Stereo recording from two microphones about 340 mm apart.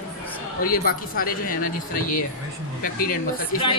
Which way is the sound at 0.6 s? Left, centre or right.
Left.